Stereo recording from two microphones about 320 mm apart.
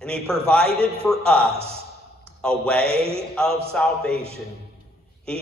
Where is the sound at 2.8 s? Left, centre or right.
Centre.